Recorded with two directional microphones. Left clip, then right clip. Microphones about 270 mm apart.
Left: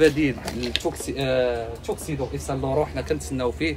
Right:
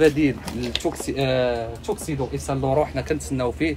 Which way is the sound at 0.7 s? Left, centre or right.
Right.